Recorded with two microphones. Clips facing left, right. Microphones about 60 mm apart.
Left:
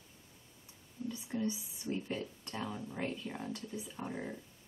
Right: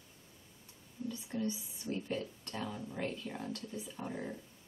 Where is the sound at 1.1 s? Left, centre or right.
Centre.